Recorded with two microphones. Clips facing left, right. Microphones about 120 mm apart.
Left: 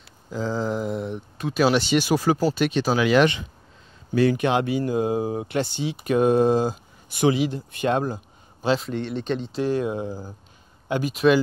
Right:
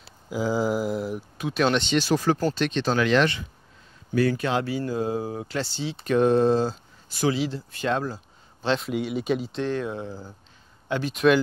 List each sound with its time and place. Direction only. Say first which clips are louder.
0.3 s speech: right 2 dB; 10° right (ahead or behind); by 8.2 s 20° left (ahead or behind)
8.6 s speech: left 2 dB; centre (ahead or behind)
9.6 s speech: left 4 dB; 10° left (ahead or behind)